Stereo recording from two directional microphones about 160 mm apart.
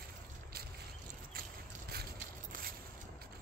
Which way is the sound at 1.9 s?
80° right.